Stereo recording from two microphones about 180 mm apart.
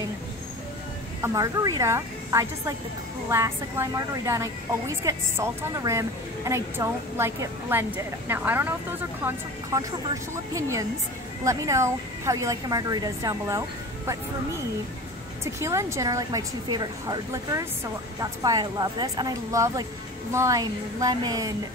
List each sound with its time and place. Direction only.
1.2 s a woman's voice: 20° right (ahead or behind)
15.4 s a woman's voice: 15° right (ahead or behind)